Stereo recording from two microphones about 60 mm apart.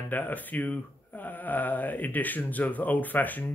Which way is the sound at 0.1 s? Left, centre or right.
Left.